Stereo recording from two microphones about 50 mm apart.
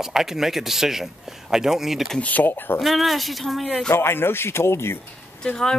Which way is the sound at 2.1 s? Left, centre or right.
Left.